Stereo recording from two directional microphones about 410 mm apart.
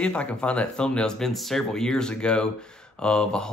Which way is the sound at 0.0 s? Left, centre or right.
Centre.